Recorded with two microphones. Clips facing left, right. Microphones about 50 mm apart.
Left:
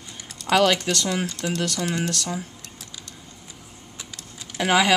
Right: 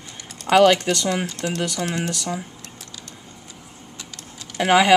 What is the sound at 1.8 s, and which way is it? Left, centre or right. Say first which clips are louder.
Speech: even; right.